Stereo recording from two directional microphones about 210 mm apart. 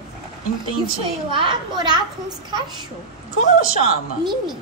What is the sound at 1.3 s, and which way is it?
A child's voice, 25° right (ahead or behind).